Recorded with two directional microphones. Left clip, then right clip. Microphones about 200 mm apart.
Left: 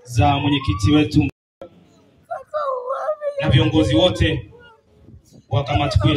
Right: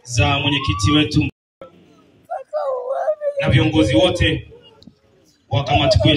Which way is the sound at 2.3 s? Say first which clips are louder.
Right 1 dB; 5° left (ahead or behind).